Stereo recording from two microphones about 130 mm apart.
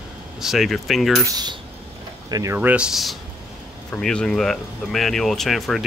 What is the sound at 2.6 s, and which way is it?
Speech, 10° right (ahead or behind).